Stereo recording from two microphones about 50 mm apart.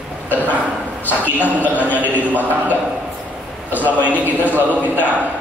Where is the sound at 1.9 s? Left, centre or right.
Left.